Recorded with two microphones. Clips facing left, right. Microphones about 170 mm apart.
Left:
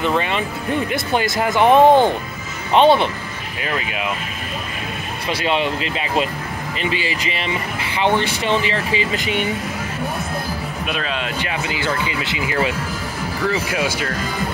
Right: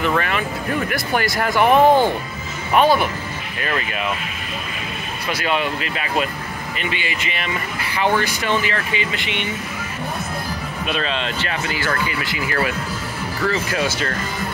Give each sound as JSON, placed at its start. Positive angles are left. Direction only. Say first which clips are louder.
{"t": 0.0, "sound": "speech", "louder": "left 1 dB", "side_deg": 20}
{"t": 3.6, "sound": "speech", "louder": "even", "side_deg": 10}
{"t": 5.3, "sound": "speech", "louder": "left 2 dB", "side_deg": 30}
{"t": 10.9, "sound": "speech", "louder": "right 2 dB", "side_deg": 5}